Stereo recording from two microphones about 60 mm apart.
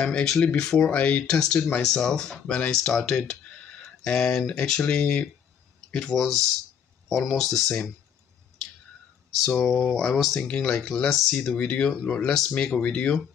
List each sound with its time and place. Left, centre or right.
0.0 s speech: centre
2.4 s speech: left
5.9 s a sound: centre
6.1 s speech: centre
9.4 s speech: centre